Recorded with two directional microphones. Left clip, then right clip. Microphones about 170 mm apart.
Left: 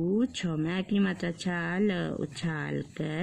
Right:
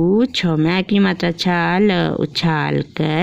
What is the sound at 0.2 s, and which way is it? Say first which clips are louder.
Speech: right 14 dB; 45° right (ahead or behind).